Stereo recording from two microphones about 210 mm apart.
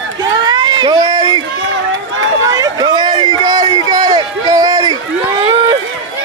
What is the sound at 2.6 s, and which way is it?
Run, 20° right (ahead or behind).